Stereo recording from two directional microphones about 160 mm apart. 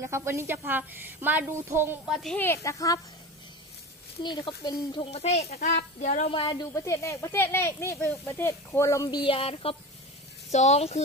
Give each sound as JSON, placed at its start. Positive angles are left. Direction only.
{"t": 0.0, "sound": "a woman's voice", "side_deg": -15}
{"t": 2.0, "sound": "speech", "side_deg": 0}
{"t": 2.4, "sound": "speech", "side_deg": 15}
{"t": 4.2, "sound": "speech", "side_deg": 30}
{"t": 6.3, "sound": "speech", "side_deg": 30}